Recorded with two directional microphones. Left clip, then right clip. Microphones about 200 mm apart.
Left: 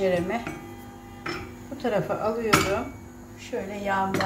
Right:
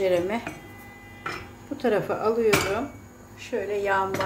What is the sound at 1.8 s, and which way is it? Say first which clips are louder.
Speech: right 2 dB; 55° right (ahead or behind).